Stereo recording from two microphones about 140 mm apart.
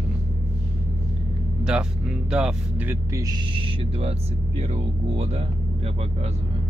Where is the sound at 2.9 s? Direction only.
20° right (ahead or behind).